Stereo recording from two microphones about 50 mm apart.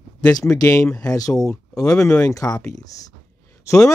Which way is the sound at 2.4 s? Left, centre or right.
Left.